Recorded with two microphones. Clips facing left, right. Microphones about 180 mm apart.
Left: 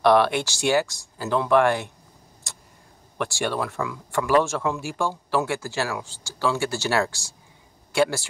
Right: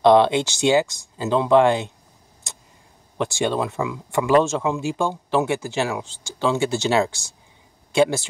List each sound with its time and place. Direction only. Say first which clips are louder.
0.0 s speech: right 4 dB; 20° right (ahead or behind)
2.4 s vehicle: right 2 dB; 20° right (ahead or behind)
3.2 s speech: right 4 dB; 20° right (ahead or behind)